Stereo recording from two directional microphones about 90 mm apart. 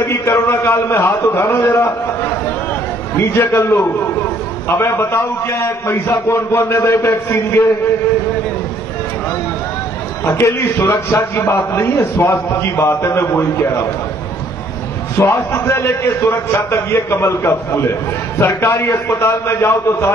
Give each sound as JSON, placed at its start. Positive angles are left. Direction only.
{"t": 0.2, "sound": "a man's voice", "side_deg": 35}
{"t": 10.2, "sound": "a man's voice", "side_deg": 30}
{"t": 15.2, "sound": "a man's voice", "side_deg": 25}